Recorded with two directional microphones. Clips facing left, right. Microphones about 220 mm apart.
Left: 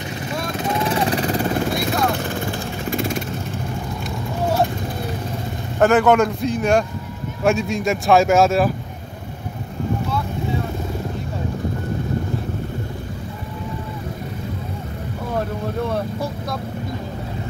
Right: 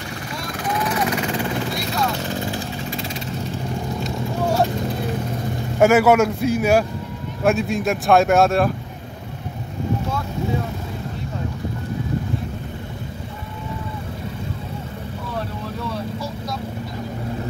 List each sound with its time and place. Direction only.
0.6 s vehicle: 25° left (ahead or behind); by 3.3 s 50° left (ahead or behind)
5.8 s speech: 10° right (ahead or behind)
15.3 s vehicle: 55° left (ahead or behind)